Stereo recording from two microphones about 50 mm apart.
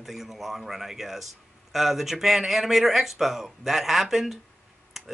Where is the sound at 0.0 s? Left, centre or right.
Centre.